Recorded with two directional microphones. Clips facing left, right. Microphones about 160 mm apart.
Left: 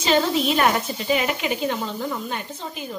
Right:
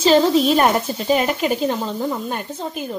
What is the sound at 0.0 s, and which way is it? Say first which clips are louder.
Speech: right 6 dB; 40° right (ahead or behind).